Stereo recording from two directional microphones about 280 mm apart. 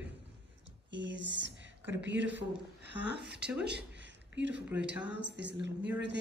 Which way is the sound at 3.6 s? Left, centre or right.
Right.